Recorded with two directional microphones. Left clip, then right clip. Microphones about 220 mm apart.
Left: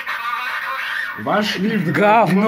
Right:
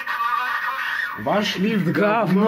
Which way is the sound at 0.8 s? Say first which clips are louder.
Left 1 dB; 30° right (ahead or behind).